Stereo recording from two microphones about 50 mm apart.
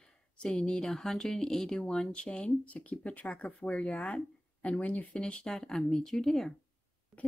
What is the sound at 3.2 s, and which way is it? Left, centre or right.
Speech, centre.